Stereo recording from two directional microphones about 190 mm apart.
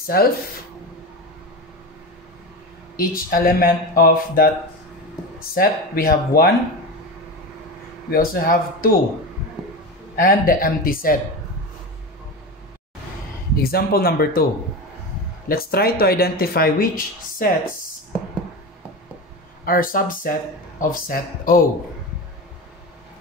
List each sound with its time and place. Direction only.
0.0 s speech: 50° left (ahead or behind)
3.0 s speech: 50° left (ahead or behind)
5.5 s speech: 50° left (ahead or behind)
8.1 s speech: 50° left (ahead or behind)
10.1 s speech: 50° left (ahead or behind)
13.6 s speech: 50° left (ahead or behind)
19.6 s speech: 50° left (ahead or behind)